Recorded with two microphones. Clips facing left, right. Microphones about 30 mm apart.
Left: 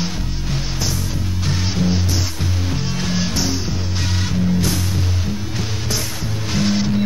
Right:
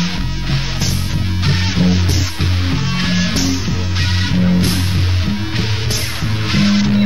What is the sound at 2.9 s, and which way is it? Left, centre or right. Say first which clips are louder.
Music: right 6 dB; right.